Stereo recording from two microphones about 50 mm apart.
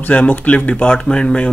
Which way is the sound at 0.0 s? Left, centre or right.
Left.